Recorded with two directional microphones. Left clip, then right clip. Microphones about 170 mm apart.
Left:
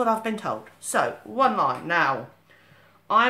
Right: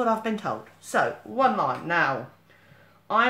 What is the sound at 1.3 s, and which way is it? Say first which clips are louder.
A man's voice: left 1 dB; 25° left (ahead or behind).